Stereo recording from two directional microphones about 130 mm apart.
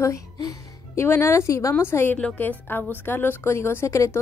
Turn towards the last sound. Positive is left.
turn(degrees=20)  # may be behind; listen again after turning